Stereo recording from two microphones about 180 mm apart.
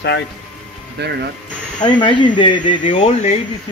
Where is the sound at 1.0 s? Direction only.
65° right (ahead or behind).